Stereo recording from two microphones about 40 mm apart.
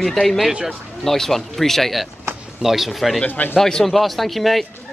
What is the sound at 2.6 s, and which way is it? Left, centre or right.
Speech, centre.